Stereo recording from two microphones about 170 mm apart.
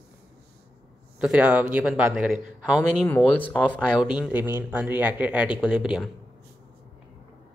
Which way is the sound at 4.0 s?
5° right (ahead or behind).